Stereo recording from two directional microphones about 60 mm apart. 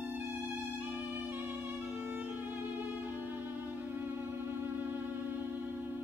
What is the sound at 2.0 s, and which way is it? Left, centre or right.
Violin, right.